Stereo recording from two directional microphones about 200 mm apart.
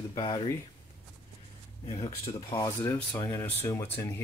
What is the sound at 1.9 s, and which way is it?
Speech, 30° left (ahead or behind).